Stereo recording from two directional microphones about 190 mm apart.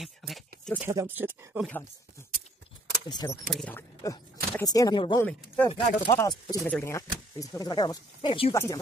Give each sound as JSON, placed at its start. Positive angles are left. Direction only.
{"t": 0.0, "sound": "a sound", "side_deg": 0}
{"t": 0.8, "sound": "speech", "side_deg": -10}
{"t": 3.1, "sound": "speech", "side_deg": 20}
{"t": 3.5, "sound": "speech", "side_deg": 5}
{"t": 4.0, "sound": "speech", "side_deg": 20}
{"t": 6.1, "sound": "speech", "side_deg": 15}